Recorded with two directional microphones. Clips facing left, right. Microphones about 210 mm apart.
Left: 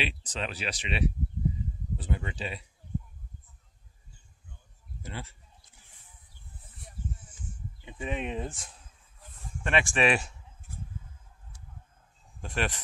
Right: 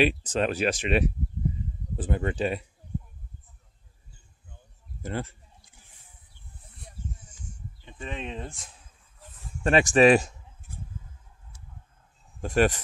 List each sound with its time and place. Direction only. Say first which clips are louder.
0.0 s speech: right 11 dB; 50° right (ahead or behind)
5.0 s speech: right 9 dB; 50° right (ahead or behind)
7.2 s sheep: left 1 dB; 10° left (ahead or behind)
8.5 s speech: left 2 dB; centre (ahead or behind)
9.6 s speech: right 8 dB; 40° right (ahead or behind)
12.4 s speech: right 10 dB; 45° right (ahead or behind)